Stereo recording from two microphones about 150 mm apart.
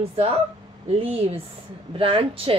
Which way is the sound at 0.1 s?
40° right (ahead or behind).